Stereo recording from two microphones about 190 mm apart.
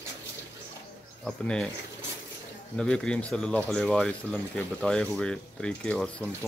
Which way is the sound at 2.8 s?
5° left (ahead or behind).